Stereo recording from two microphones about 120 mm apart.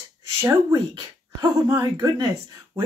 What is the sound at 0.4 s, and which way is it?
Speech, 25° right (ahead or behind).